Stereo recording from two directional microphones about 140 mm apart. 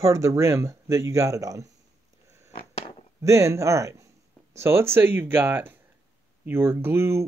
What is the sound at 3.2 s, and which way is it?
Speech, 20° right (ahead or behind).